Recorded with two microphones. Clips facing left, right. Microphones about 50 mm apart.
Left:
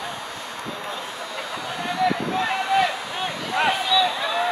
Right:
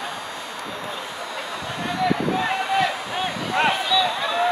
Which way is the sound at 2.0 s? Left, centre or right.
Centre.